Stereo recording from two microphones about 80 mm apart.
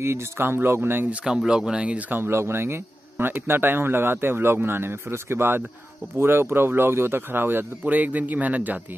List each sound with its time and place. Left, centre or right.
0.0 s speech: right
1.2 s speech: centre